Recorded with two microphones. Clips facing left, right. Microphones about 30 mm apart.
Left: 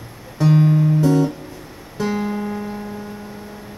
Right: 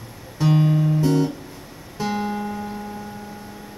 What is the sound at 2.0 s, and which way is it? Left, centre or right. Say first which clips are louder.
Music: left 2 dB; right.